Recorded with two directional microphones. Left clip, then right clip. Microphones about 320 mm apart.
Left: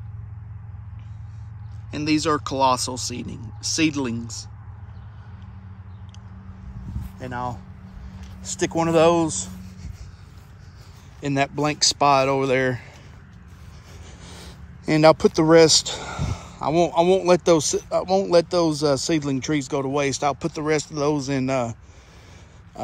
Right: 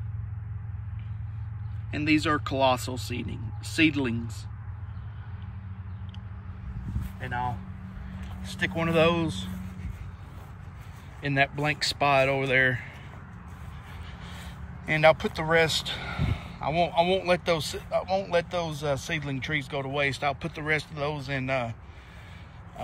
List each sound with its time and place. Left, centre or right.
1.9 s speech: centre
7.2 s speech: centre
11.1 s speech: centre
14.2 s speech: centre